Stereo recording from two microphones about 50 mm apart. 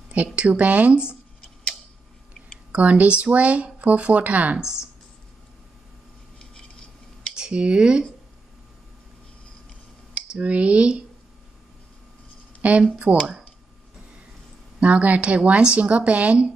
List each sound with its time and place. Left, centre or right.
0.1 s speech: right
2.7 s speech: right
4.6 s speech: centre
7.3 s speech: centre
10.4 s speech: right
12.6 s speech: right
14.8 s speech: right